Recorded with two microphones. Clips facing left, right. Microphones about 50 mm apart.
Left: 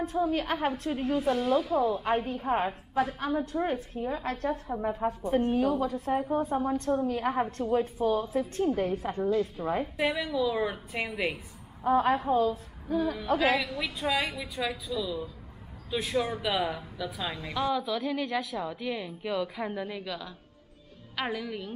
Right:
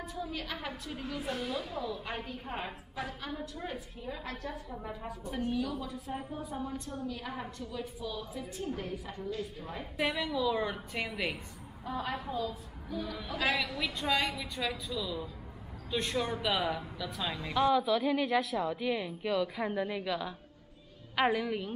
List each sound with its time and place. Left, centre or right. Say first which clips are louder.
0.0 s a woman's voice: left 11 dB; left
3.3 s a woman's voice: left 11 dB; left
9.9 s a woman's voice: right 2 dB; centre
11.8 s a woman's voice: left 12 dB; left
13.6 s a woman's voice: left 2 dB; centre